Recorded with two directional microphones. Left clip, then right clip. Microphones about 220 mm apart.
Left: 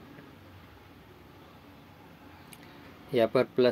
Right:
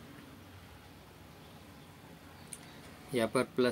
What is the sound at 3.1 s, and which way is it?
Speech, 5° left (ahead or behind).